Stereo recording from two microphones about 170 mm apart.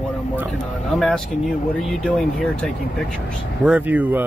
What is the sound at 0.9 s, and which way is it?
Speech, 5° left (ahead or behind).